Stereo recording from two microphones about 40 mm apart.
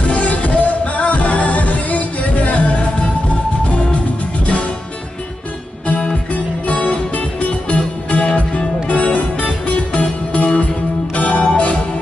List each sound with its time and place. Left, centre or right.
0.1 s music: left
5.9 s music: left